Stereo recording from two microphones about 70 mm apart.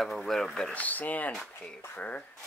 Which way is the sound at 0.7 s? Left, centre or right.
Left.